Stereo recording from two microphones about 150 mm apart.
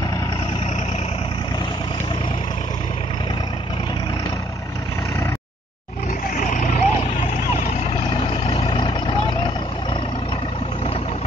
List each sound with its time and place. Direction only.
6.5 s vehicle: 55° left (ahead or behind)
8.5 s vehicle: 35° left (ahead or behind)